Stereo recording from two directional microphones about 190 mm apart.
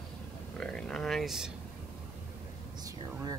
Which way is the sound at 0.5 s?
5° left (ahead or behind).